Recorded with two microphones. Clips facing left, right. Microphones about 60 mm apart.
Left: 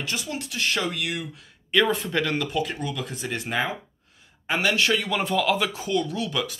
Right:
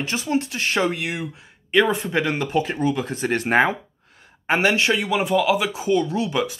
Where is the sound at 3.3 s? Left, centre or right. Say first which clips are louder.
Right 9 dB; right.